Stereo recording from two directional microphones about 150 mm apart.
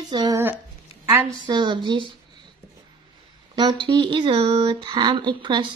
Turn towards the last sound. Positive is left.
turn(degrees=-30)  # may be behind; listen again after turning